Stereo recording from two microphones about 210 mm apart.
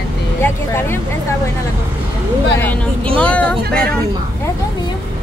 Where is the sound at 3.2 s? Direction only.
5° left (ahead or behind).